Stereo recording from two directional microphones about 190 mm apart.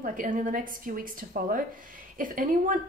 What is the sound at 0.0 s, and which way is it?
Speech, 45° right (ahead or behind).